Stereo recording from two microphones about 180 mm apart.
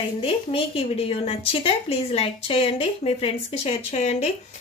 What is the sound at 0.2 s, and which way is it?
A woman's voice, 30° left (ahead or behind).